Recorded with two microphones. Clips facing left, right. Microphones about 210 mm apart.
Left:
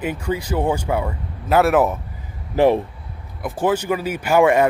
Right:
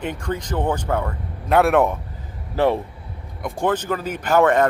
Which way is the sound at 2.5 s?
15° left (ahead or behind).